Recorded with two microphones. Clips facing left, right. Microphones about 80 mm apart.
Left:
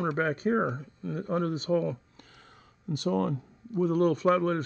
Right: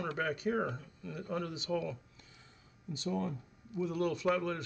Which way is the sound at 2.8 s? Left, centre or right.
Left.